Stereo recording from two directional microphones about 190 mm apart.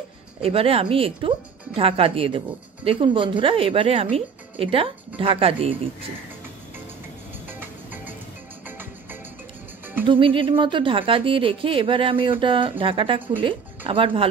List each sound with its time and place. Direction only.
0.4 s a woman's voice: 30° right (ahead or behind)
7.4 s music: 10° right (ahead or behind)
10.0 s a woman's voice: 25° right (ahead or behind)